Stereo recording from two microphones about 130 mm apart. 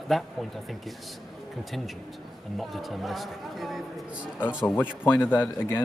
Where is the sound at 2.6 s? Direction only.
Centre (ahead or behind).